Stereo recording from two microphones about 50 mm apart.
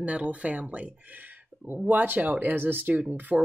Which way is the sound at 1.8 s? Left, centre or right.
Right.